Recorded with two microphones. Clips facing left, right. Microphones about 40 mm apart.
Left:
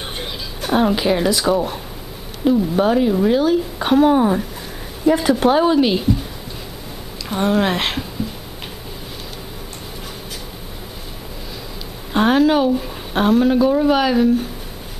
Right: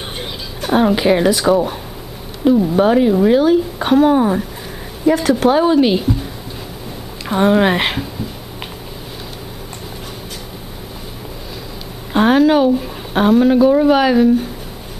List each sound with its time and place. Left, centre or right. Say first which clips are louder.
0.2 s speech: right 2 dB; centre
7.2 s speech: right 5 dB; centre
12.1 s speech: right 3 dB; centre